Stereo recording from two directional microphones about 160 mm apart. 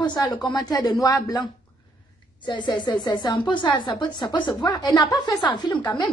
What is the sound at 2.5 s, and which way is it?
Speech, 30° left (ahead or behind).